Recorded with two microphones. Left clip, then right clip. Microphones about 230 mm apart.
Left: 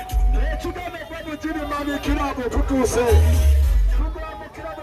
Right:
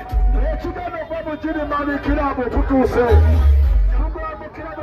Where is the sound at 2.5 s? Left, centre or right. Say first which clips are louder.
Right 4 dB; centre.